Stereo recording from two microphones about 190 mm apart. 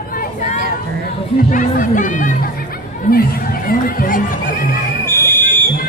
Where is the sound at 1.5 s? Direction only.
45° left (ahead or behind).